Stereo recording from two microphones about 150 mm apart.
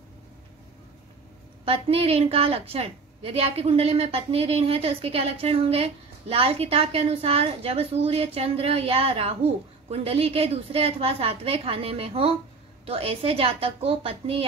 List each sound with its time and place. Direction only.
1.6 s a woman's voice: 40° right (ahead or behind)